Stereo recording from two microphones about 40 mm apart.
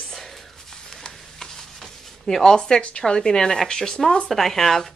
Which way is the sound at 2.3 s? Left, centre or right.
Centre.